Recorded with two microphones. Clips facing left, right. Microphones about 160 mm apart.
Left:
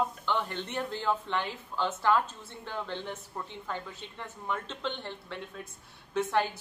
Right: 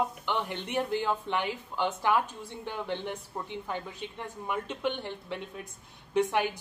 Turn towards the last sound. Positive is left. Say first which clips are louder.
# right 2 dB
turn(degrees=-15)  # may be behind; listen again after turning